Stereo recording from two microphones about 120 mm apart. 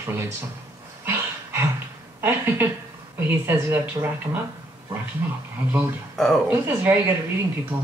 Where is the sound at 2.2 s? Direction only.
20° right (ahead or behind).